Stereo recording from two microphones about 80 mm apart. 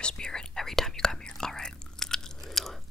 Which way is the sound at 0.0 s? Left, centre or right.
Centre.